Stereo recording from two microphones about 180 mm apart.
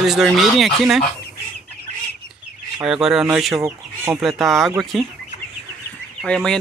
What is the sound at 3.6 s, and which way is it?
Speech, 15° right (ahead or behind).